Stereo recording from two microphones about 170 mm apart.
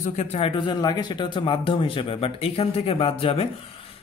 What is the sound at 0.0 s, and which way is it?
Speech, 45° left (ahead or behind).